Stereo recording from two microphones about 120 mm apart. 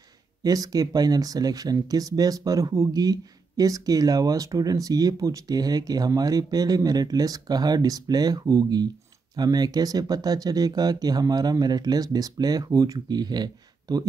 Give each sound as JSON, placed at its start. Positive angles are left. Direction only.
{"t": 0.4, "sound": "speech", "side_deg": -30}